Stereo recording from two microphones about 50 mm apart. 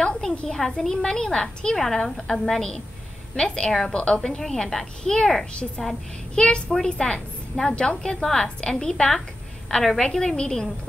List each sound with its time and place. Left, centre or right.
0.0 s a woman's voice: centre